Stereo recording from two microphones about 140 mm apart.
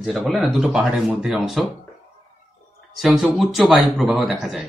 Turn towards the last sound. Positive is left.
turn(degrees=0)  # may be behind; listen again after turning